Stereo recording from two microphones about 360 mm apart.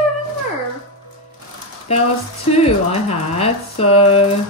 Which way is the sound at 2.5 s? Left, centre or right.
Centre.